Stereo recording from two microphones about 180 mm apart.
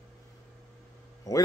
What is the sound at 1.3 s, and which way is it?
Speech, 20° left (ahead or behind).